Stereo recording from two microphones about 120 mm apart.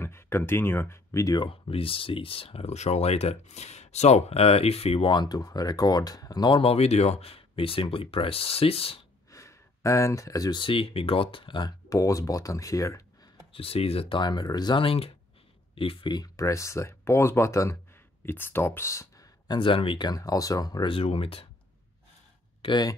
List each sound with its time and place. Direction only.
0.0 s speech: 20° left (ahead or behind)
1.4 s speech: 50° left (ahead or behind)
6.6 s speech: 60° left (ahead or behind)
9.3 s a sound: 25° left (ahead or behind)
10.6 s speech: 50° left (ahead or behind)
11.9 s speech: 25° left (ahead or behind)
13.5 s speech: 55° left (ahead or behind); by 14.8 s 35° left (ahead or behind)
14.8 s speech: 50° left (ahead or behind); by 19.5 s 25° left (ahead or behind)
19.5 s speech: 45° left (ahead or behind); by 20.8 s 30° left (ahead or behind)
20.8 s speech: 50° left (ahead or behind)
22.6 s speech: 40° left (ahead or behind)